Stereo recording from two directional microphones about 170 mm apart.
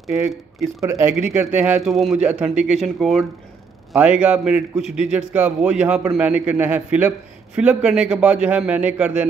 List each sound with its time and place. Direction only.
0.8 s a man's voice: 15° right (ahead or behind)